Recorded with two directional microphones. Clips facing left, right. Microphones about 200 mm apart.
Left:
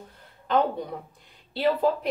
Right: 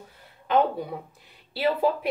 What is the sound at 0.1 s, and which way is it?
Speech, 5° right (ahead or behind).